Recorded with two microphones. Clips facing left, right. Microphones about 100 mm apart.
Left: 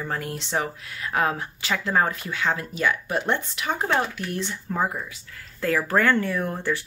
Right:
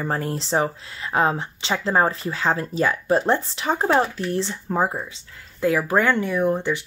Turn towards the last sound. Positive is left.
turn(degrees=-15)  # may be behind; listen again after turning